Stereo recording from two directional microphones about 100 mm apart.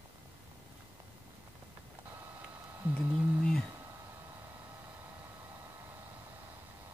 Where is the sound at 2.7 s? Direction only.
25° right (ahead or behind).